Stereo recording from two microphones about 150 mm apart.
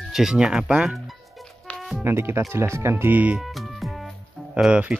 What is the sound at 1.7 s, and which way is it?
Music, centre (ahead or behind).